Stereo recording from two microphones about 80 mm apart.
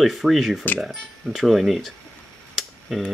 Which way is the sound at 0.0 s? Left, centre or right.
Centre.